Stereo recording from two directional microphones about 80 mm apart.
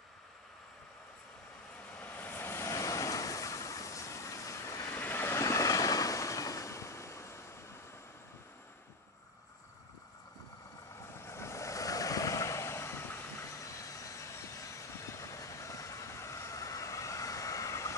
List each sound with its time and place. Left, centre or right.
2.0 s vehicle: left
11.1 s vehicle: left
13.6 s vehicle: left